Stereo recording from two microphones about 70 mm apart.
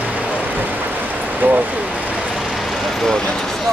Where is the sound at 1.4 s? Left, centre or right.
Right.